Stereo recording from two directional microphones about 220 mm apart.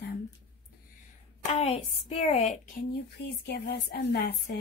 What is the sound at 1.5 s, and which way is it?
A woman's voice, 25° left (ahead or behind).